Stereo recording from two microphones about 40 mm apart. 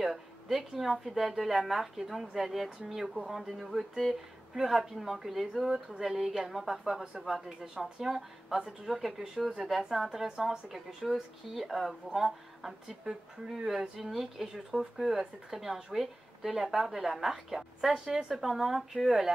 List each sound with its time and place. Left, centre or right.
0.0 s a sound: centre
0.9 s a woman's voice: centre
11.1 s a woman's voice: centre